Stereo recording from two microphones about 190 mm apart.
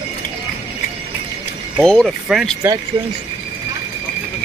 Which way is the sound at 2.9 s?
25° right (ahead or behind).